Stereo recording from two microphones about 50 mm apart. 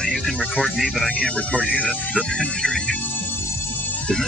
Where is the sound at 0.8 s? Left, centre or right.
Centre.